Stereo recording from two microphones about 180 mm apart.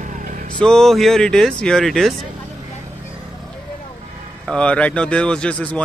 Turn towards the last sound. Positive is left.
turn(degrees=5)  # may be behind; listen again after turning